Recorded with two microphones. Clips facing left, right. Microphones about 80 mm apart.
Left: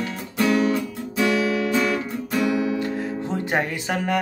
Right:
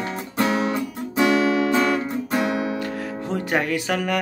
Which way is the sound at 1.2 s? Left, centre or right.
Right.